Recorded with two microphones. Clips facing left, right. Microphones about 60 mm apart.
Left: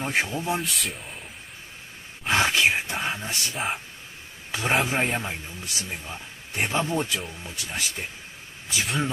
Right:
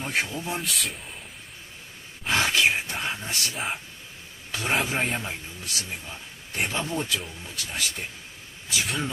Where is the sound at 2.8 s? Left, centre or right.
Centre.